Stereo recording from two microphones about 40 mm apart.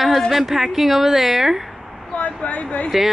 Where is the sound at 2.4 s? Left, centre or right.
Left.